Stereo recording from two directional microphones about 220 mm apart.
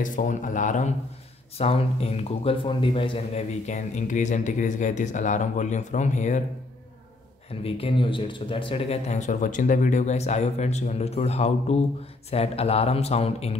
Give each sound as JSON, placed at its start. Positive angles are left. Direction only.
{"t": 0.0, "sound": "a man's voice", "side_deg": 35}
{"t": 7.6, "sound": "speech", "side_deg": 25}